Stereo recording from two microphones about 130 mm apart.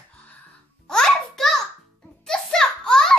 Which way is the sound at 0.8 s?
5° left (ahead or behind).